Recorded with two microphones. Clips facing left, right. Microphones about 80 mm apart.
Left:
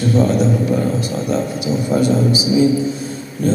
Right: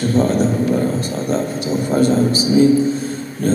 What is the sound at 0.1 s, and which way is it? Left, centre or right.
A man's voice, right.